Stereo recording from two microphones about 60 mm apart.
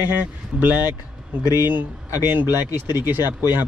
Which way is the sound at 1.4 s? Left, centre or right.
Left.